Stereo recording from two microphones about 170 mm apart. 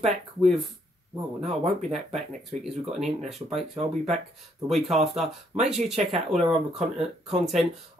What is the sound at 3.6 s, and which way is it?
Speech, 35° right (ahead or behind).